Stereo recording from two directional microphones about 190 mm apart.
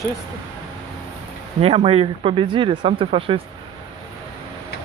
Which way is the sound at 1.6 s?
30° right (ahead or behind).